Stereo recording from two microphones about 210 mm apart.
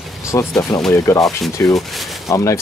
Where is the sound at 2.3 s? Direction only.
15° left (ahead or behind).